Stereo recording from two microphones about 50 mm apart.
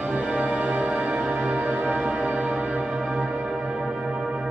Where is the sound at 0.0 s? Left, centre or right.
Right.